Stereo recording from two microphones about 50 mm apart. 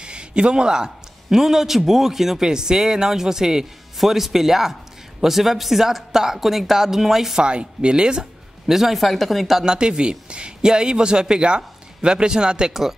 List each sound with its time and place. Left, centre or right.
0.0 s speech: centre
7.4 s speech: centre
9.8 s speech: centre